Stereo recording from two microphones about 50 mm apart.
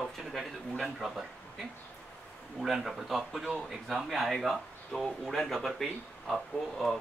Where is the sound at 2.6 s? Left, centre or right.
Centre.